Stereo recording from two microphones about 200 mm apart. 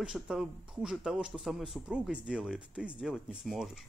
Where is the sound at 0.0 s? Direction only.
5° right (ahead or behind).